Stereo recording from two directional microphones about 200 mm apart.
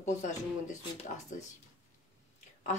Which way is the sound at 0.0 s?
40° left (ahead or behind).